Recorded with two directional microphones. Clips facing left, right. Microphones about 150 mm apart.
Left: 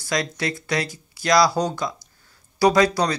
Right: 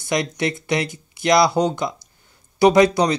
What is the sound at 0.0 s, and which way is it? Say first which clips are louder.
Speech: right 3 dB; 20° right (ahead or behind).